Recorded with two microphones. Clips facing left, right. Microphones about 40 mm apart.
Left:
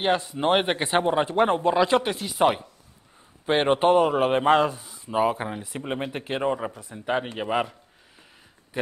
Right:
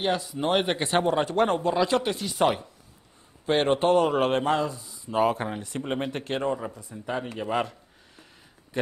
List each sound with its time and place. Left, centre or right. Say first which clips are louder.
0.0 s speech: left 3 dB; left
2.2 s speech: left 2 dB; centre
4.0 s speech: left 2 dB; centre
4.5 s speech: left 6 dB; left
5.1 s speech: even; centre
6.4 s speech: left 4 dB; left
6.7 s speech: left 1 dB; left
7.0 s speech: left 4 dB; left